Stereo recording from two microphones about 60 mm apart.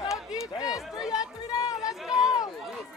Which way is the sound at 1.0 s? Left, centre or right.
Centre.